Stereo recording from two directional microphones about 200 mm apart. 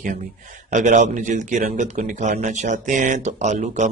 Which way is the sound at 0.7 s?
35° right (ahead or behind).